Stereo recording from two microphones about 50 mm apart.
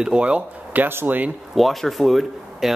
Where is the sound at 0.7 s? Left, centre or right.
Right.